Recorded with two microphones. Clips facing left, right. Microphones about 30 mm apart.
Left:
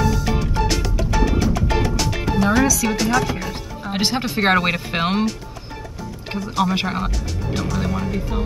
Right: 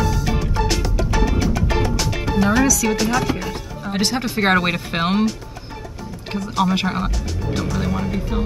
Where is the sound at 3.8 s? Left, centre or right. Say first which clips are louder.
Even; centre.